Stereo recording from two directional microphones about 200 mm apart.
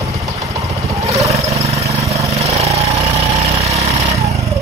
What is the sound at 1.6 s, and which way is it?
Vehicle, 30° right (ahead or behind).